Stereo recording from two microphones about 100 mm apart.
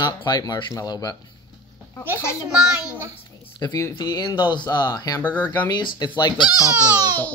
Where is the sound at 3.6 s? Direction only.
40° left (ahead or behind).